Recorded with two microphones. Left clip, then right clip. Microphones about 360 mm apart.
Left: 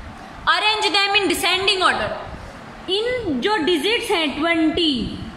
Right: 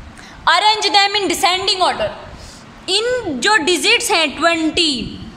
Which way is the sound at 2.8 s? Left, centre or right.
Right.